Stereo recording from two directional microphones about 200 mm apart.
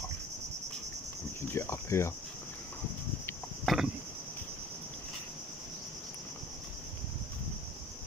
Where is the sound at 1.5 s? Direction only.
15° left (ahead or behind).